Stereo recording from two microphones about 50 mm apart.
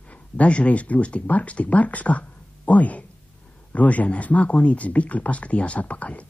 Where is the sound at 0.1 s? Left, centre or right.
Left.